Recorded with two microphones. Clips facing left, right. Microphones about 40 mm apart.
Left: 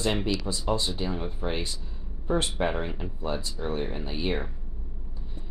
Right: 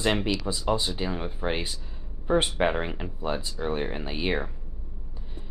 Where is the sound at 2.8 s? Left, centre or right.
Right.